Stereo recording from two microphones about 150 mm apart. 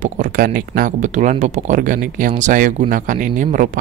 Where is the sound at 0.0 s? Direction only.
65° right (ahead or behind).